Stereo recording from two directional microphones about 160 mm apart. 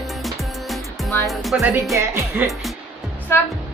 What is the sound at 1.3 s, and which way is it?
Speech, centre (ahead or behind).